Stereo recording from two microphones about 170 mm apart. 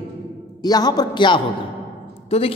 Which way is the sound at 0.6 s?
25° left (ahead or behind).